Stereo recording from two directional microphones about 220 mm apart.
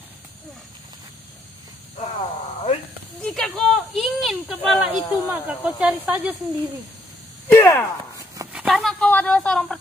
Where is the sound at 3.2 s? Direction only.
Centre (ahead or behind).